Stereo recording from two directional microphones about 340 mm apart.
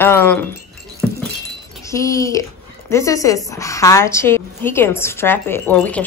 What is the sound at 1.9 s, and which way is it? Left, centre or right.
A woman's voice, centre.